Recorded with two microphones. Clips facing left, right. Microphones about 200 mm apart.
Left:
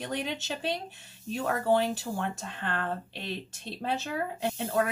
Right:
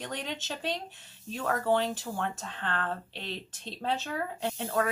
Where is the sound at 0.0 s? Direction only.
10° left (ahead or behind).